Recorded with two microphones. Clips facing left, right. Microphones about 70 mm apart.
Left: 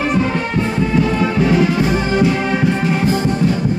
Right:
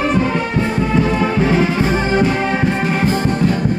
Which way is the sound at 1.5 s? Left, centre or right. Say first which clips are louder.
Left 1 dB; right.